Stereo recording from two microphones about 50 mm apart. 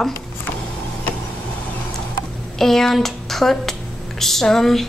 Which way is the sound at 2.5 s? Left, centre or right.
Centre.